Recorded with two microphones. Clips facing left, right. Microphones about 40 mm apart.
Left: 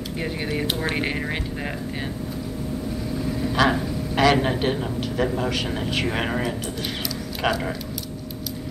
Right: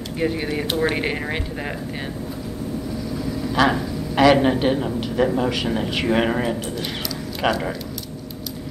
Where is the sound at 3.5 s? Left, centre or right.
Centre.